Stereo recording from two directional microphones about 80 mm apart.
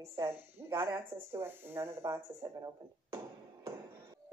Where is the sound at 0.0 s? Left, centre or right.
Right.